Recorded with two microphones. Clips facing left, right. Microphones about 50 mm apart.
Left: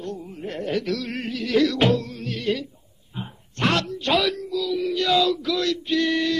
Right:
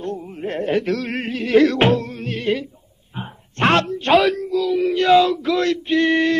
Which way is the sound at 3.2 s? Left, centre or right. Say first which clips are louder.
Right 5 dB; right.